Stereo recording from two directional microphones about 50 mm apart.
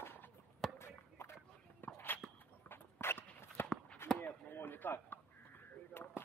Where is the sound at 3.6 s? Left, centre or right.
Left.